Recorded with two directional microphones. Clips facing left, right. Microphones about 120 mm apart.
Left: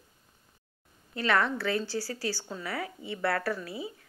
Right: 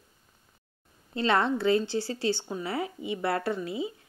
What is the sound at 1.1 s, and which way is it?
A woman's voice, 25° right (ahead or behind).